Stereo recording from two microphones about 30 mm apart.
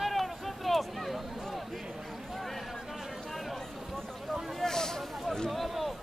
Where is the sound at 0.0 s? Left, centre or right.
Centre.